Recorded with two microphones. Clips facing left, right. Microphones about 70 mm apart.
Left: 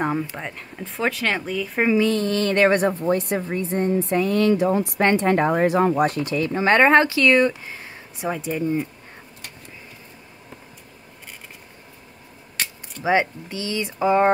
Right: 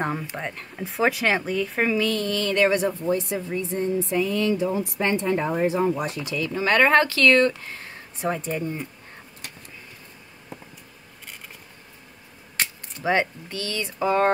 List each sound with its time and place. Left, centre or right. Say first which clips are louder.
0.0 s speech: left 3 dB; centre
1.8 s speech: left 5 dB; centre
2.0 s a woman's voice: left 4 dB; left; by 8.6 s centre
13.0 s speech: left 3 dB; centre